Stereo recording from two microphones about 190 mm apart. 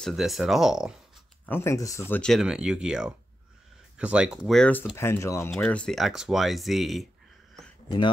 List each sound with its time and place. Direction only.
0.0 s speech: centre (ahead or behind)
1.4 s speech: 10° left (ahead or behind)